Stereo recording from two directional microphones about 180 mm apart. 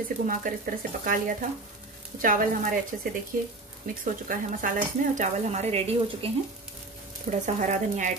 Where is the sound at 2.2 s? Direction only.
50° right (ahead or behind).